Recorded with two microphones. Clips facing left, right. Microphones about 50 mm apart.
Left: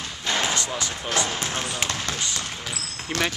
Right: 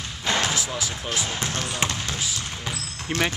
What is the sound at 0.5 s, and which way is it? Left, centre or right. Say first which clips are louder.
Speech: left 1 dB; centre.